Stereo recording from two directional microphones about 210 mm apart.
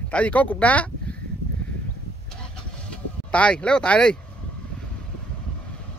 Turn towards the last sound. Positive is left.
turn(degrees=5)  # may be behind; listen again after turning